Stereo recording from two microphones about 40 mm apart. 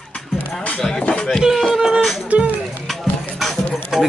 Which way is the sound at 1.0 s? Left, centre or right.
Left.